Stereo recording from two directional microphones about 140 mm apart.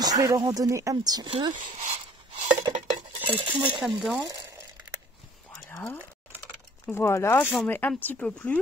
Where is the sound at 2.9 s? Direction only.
40° right (ahead or behind).